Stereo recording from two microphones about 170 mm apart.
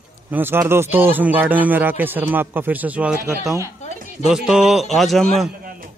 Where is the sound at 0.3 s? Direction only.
10° right (ahead or behind).